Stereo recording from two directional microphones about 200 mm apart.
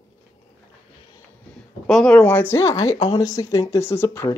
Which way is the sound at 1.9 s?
5° left (ahead or behind).